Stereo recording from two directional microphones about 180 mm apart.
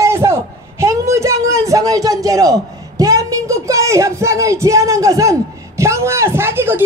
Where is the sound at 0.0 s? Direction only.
15° right (ahead or behind).